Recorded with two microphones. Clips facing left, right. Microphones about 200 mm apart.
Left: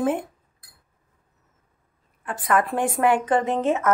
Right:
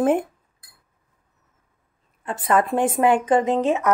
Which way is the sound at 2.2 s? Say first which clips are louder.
Right 2 dB; 25° right (ahead or behind).